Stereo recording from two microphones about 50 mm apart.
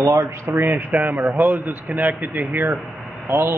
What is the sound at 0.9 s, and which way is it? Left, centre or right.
Speech, centre.